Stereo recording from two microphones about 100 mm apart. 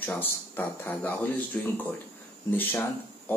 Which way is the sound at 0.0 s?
20° left (ahead or behind).